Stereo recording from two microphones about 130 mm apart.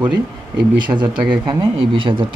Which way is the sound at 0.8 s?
35° right (ahead or behind).